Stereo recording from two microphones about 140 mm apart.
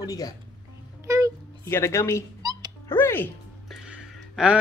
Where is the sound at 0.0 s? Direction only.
25° left (ahead or behind).